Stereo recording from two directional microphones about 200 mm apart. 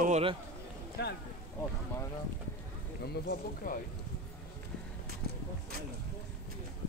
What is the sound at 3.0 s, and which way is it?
Speech, 50° left (ahead or behind).